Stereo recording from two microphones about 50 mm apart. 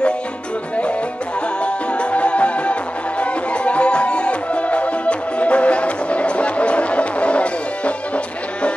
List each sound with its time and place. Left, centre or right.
1.6 s music: left